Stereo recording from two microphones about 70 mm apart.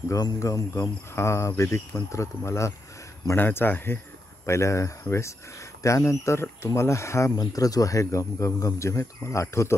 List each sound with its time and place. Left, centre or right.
0.1 s cricket: left
0.4 s speech: left
3.3 s speech: left
4.5 s speech: left
7.3 s speech: left